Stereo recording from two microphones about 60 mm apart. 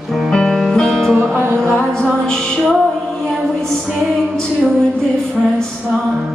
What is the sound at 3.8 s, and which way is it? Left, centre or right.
Music, centre.